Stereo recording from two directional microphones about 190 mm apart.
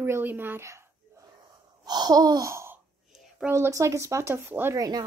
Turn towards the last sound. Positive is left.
turn(degrees=-20)  # may be behind; listen again after turning